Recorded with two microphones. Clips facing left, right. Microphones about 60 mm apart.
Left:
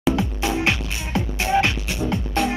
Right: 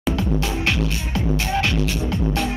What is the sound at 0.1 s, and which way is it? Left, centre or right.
Music, centre.